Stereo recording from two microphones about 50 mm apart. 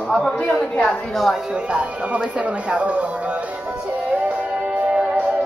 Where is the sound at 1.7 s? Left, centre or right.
Right.